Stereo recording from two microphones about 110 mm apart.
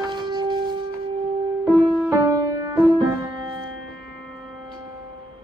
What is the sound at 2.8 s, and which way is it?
Music, 55° right (ahead or behind).